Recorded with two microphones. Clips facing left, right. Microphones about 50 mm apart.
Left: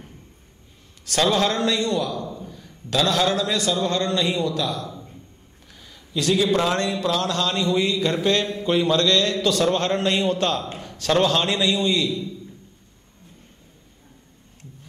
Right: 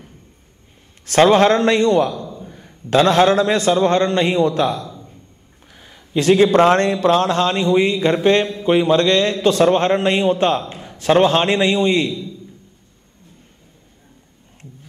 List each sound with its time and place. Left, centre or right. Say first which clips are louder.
1.0 s a man's voice: right 9 dB; right